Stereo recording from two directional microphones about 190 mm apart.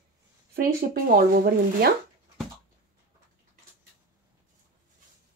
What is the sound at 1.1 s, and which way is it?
Speech, 50° right (ahead or behind).